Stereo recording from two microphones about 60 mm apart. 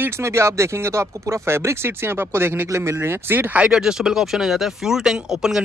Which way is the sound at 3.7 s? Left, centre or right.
Centre.